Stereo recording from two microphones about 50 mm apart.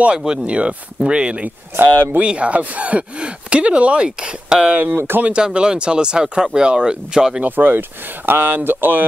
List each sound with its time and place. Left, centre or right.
0.2 s speech: centre
4.9 s speech: right
5.3 s speech: centre
7.4 s speech: right